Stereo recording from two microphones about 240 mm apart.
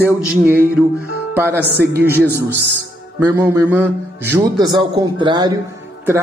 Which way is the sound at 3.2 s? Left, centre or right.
Centre.